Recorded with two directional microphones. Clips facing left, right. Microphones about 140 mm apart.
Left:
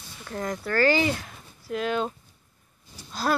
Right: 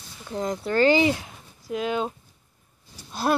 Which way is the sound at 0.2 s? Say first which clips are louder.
Right 3 dB; 20° right (ahead or behind).